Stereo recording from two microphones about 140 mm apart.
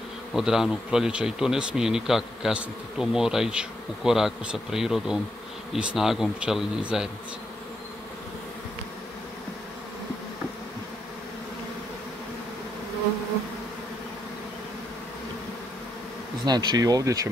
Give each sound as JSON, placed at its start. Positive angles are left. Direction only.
{"t": 0.3, "sound": "speech", "side_deg": -5}
{"t": 16.4, "sound": "speech", "side_deg": -30}